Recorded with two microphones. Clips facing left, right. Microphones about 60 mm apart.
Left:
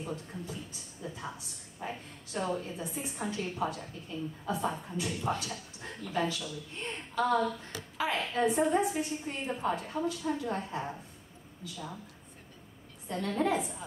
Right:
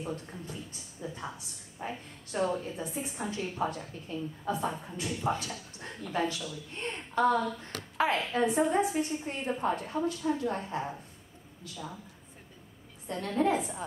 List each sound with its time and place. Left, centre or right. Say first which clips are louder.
0.3 s a woman's voice: left 1 dB; centre
7.7 s speech: right 2 dB; right
8.1 s a woman's voice: left 2 dB; centre
13.0 s a woman's voice: right 2 dB; centre